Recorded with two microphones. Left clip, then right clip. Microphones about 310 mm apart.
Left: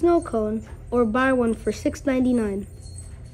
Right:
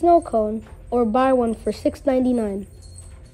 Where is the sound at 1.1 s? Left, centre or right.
Centre.